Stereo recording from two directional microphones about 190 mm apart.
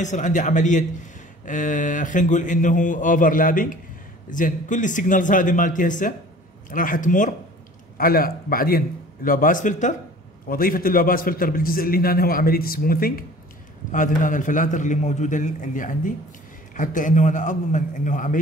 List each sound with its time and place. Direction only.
0.0 s a man's voice: 40° left (ahead or behind)